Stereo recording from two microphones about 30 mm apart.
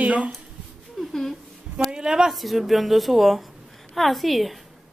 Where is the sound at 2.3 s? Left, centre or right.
Centre.